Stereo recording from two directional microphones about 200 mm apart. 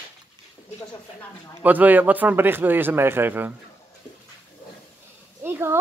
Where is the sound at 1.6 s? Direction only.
10° right (ahead or behind).